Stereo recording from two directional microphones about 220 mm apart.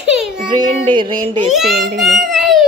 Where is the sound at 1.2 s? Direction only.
35° right (ahead or behind).